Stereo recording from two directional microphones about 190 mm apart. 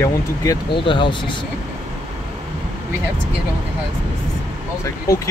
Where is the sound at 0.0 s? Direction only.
20° left (ahead or behind).